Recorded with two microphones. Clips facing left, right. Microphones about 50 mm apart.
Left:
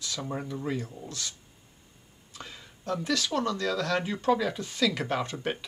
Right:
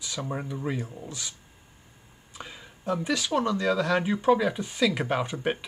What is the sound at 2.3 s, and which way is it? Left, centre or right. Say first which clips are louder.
Speech: right 2 dB; centre.